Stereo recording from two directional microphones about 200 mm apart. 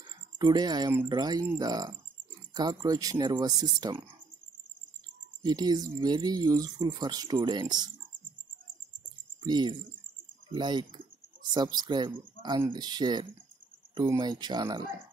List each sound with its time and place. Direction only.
0.4 s speech: 20° right (ahead or behind)
5.4 s speech: 20° right (ahead or behind)
9.4 s speech: 20° right (ahead or behind)